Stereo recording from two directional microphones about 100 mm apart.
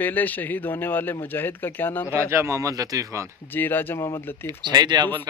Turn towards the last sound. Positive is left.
turn(degrees=-45)  # may be behind; listen again after turning